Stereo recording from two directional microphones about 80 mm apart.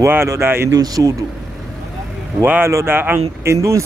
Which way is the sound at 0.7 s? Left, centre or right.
Right.